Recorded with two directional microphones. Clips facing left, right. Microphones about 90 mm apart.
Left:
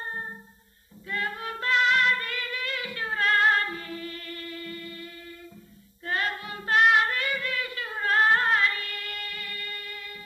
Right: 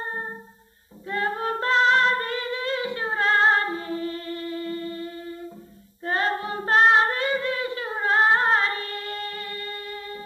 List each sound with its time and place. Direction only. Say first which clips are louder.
0.0 s music: right 4 dB; 30° right (ahead or behind)
6.0 s singing: right 5 dB; 30° right (ahead or behind)